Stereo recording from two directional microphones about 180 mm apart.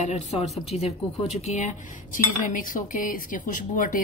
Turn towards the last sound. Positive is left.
turn(degrees=50)  # may be behind; listen again after turning